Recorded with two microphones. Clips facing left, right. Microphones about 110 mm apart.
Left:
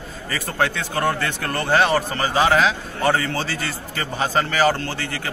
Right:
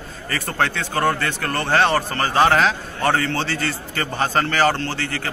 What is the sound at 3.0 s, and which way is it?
A man's voice, 15° left (ahead or behind).